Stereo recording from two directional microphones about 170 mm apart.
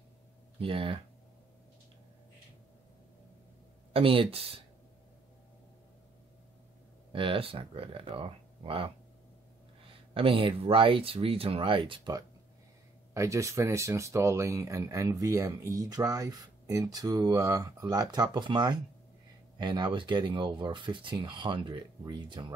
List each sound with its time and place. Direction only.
0.6 s speech: 30° right (ahead or behind)
3.9 s speech: 30° right (ahead or behind)
7.1 s speech: 30° right (ahead or behind)
10.1 s speech: 30° right (ahead or behind)